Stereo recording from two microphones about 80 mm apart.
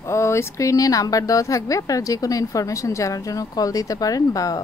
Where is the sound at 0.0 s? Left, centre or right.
Left.